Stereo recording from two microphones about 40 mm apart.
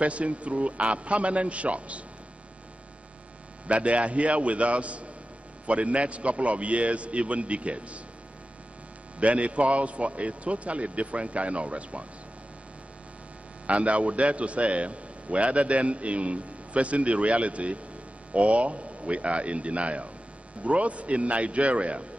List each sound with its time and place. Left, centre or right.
0.0 s a man's voice: right
3.6 s a man's voice: right
9.2 s a man's voice: right
13.7 s a man's voice: right